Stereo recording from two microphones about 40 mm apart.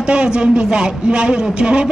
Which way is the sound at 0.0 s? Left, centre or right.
Right.